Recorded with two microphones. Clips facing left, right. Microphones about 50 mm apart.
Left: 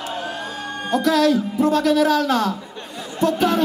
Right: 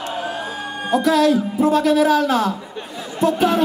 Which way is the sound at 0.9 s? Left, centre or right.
Centre.